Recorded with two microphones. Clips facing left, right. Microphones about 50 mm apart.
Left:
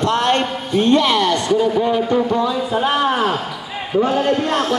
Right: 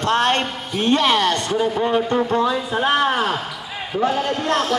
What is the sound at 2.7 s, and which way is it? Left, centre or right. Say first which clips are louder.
Speech: left 2 dB; centre.